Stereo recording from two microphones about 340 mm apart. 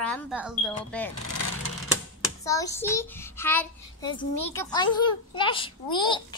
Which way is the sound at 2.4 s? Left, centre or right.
Centre.